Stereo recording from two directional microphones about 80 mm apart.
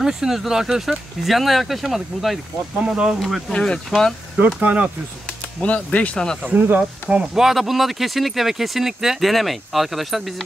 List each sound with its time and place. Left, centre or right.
0.0 s speech: centre
4.6 s speech: right
5.6 s speech: centre
6.4 s speech: centre
6.8 s speech: centre